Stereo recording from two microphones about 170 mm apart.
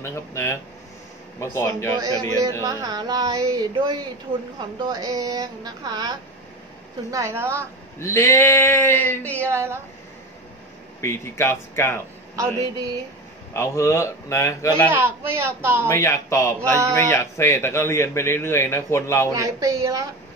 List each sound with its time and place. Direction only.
0.0 s a man's voice: 15° left (ahead or behind)
2.6 s a woman's voice: 25° right (ahead or behind)
8.0 s a man's voice: 15° left (ahead or behind)
9.4 s a woman's voice: 15° right (ahead or behind)
11.0 s a man's voice: 15° left (ahead or behind)
12.4 s a woman's voice: 20° right (ahead or behind)
13.5 s a man's voice: 15° left (ahead or behind)
14.9 s a woman's voice: 15° right (ahead or behind)
15.9 s a man's voice: 15° left (ahead or behind)
19.3 s a woman's voice: 20° right (ahead or behind)